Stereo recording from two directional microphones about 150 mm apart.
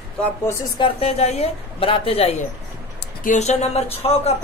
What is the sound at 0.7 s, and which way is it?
A woman's voice, 40° left (ahead or behind).